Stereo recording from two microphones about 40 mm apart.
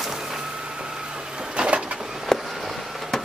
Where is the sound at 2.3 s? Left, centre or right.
Centre.